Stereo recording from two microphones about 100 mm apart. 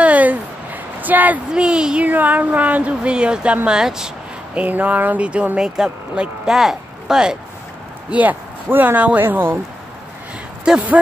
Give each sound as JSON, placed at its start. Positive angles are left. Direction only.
{"t": 0.0, "sound": "a sound", "side_deg": -15}
{"t": 1.0, "sound": "speech", "side_deg": -15}
{"t": 8.1, "sound": "speech", "side_deg": -15}
{"t": 10.6, "sound": "speech", "side_deg": -10}